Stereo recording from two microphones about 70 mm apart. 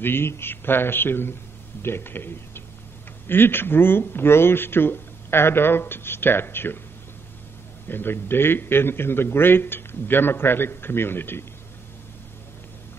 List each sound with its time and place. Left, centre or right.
0.0 s speech: left
7.9 s speech: left